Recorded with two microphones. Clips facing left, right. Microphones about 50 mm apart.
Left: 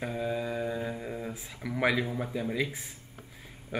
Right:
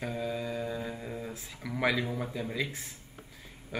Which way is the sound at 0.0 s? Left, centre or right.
Centre.